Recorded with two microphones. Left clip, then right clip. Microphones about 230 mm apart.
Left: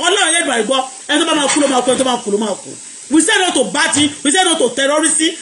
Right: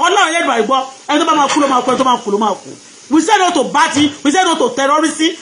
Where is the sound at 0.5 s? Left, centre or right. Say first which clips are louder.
Right 2 dB; centre.